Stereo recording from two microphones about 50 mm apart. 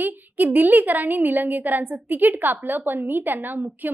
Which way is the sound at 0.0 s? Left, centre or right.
Right.